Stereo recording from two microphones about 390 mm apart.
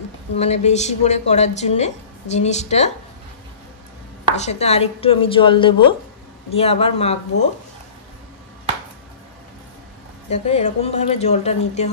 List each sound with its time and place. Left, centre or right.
0.4 s a woman's voice: centre
4.4 s a woman's voice: centre
10.3 s a woman's voice: centre